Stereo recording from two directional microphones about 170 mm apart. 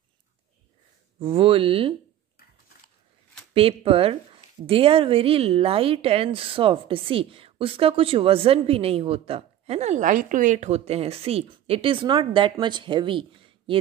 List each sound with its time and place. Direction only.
1.2 s speech: 35° right (ahead or behind)
3.5 s speech: 35° right (ahead or behind)